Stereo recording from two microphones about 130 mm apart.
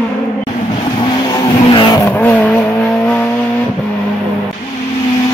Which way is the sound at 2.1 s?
15° left (ahead or behind).